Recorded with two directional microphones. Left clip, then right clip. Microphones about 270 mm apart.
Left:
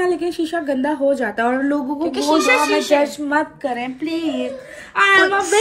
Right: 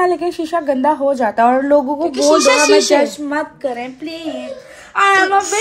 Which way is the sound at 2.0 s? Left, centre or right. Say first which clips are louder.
Right 2 dB; centre.